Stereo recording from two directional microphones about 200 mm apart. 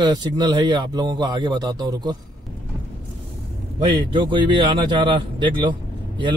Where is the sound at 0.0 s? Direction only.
20° right (ahead or behind).